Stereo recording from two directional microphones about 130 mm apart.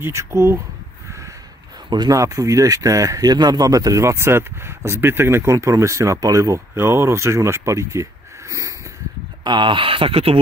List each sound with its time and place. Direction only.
0.0 s speech: 20° right (ahead or behind)
1.9 s speech: 30° right (ahead or behind)
9.4 s speech: 35° right (ahead or behind)